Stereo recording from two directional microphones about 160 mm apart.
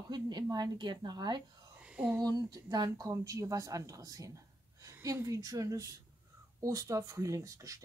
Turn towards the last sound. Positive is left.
turn(degrees=-20)  # may be behind; listen again after turning